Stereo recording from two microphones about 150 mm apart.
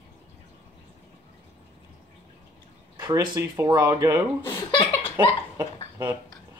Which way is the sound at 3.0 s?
25° right (ahead or behind).